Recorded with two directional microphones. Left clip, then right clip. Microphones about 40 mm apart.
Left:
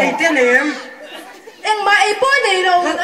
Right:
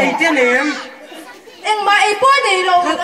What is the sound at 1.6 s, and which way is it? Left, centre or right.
Speech, left.